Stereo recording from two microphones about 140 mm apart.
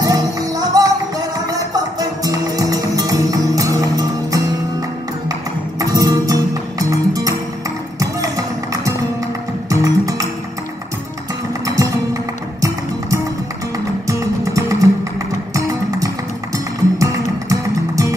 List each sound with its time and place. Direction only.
0.0 s music: 25° right (ahead or behind)
5.8 s music: 25° right (ahead or behind)
11.6 s music: 25° right (ahead or behind)
14.0 s music: 25° right (ahead or behind)
17.5 s music: 25° right (ahead or behind)